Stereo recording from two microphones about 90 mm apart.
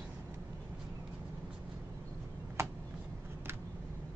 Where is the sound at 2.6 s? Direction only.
30° right (ahead or behind).